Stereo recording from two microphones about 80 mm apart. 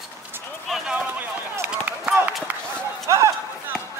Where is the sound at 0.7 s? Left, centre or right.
Centre.